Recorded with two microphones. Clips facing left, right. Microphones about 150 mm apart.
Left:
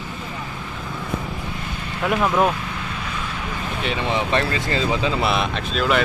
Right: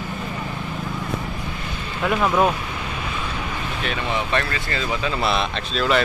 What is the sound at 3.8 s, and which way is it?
Speech, 25° left (ahead or behind).